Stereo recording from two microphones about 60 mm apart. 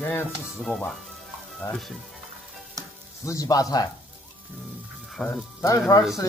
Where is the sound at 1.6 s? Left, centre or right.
Left.